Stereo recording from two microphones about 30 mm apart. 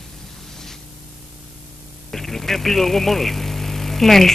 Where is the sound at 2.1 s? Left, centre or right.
Centre.